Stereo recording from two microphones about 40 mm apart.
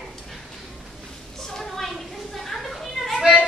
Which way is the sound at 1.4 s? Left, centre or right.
Centre.